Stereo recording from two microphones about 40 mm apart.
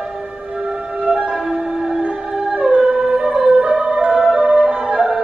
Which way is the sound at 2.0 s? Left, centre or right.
Right.